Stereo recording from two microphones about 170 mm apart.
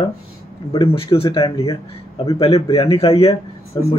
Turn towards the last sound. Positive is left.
turn(degrees=30)  # may be behind; listen again after turning